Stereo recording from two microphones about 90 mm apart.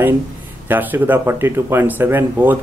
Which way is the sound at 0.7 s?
25° right (ahead or behind).